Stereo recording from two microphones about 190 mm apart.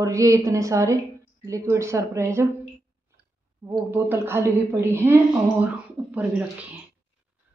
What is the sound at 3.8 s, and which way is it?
Speech, 10° right (ahead or behind).